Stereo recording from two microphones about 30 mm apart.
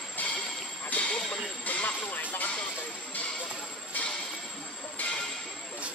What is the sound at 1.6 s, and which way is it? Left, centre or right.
Speech, left.